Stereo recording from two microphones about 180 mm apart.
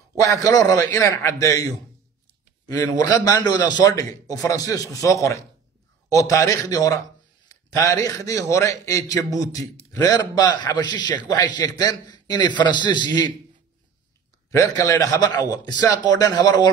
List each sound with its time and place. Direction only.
0.2 s a man's voice: 20° left (ahead or behind)
14.5 s a man's voice: 15° left (ahead or behind)